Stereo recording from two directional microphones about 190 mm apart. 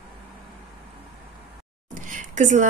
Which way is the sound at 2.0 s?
40° right (ahead or behind).